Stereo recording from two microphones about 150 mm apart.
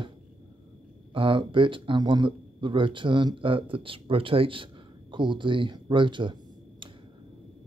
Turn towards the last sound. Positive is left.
turn(degrees=-30)  # may be behind; listen again after turning